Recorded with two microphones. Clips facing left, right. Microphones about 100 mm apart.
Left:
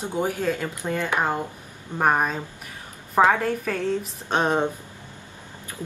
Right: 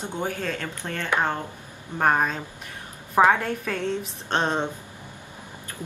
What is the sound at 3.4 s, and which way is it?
A woman's voice, centre (ahead or behind).